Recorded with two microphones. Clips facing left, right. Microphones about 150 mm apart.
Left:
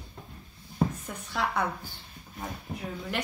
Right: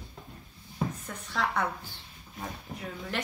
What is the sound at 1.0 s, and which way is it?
Speech, 5° left (ahead or behind).